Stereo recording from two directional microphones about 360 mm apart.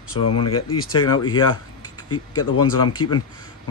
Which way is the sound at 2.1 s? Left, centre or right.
Left.